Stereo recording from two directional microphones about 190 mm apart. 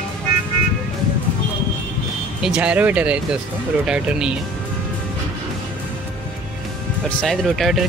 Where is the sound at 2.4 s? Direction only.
5° right (ahead or behind).